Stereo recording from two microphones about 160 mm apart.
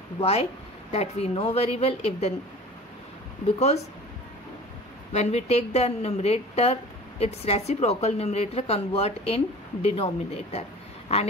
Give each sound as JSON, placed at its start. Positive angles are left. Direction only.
{"t": 0.2, "sound": "a woman's voice", "side_deg": 40}
{"t": 3.5, "sound": "speech", "side_deg": 45}
{"t": 5.1, "sound": "a woman's voice", "side_deg": 40}